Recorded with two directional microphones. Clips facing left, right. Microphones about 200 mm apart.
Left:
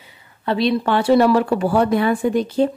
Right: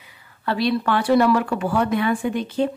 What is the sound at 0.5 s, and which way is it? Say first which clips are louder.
Speech: left 3 dB; 20° left (ahead or behind).